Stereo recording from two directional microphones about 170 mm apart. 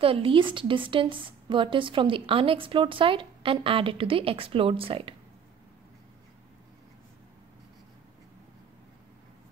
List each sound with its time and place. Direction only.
0.0 s speech: 30° right (ahead or behind)